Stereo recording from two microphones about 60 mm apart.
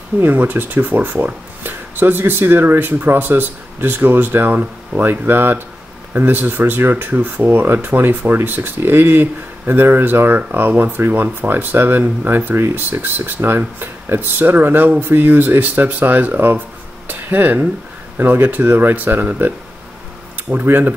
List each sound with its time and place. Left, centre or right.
0.2 s speech: right